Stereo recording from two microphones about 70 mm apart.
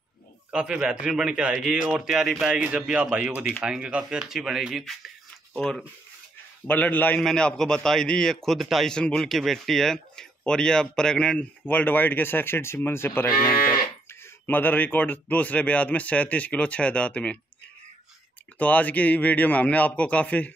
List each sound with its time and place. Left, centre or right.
0.5 s a man's voice: centre
2.5 s a man's voice: centre
5.6 s speech: centre
6.7 s speech: left
7.2 s speech: centre
8.8 s speech: centre
11.6 s speech: left
14.4 s speech: left
18.6 s speech: left